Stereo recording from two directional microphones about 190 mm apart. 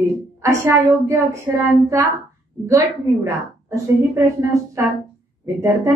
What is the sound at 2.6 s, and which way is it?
A woman's voice, 15° right (ahead or behind).